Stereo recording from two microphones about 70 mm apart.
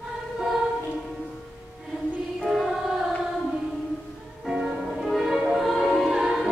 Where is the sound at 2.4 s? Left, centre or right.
Centre.